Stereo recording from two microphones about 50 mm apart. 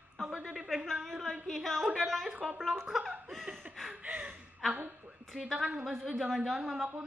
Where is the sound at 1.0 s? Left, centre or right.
Centre.